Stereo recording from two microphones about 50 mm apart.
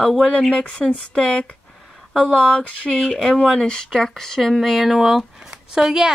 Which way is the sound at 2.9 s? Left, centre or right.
Centre.